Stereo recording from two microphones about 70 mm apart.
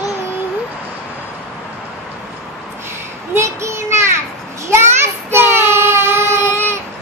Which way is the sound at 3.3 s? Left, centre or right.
Right.